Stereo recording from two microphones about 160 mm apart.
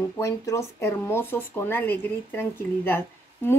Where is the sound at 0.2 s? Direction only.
20° left (ahead or behind).